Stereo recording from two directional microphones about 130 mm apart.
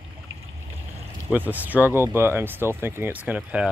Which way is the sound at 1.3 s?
10° right (ahead or behind).